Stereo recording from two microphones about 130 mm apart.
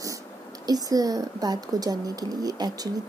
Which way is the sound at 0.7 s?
30° right (ahead or behind).